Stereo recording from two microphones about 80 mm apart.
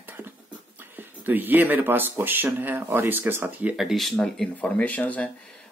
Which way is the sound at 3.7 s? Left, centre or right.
Centre.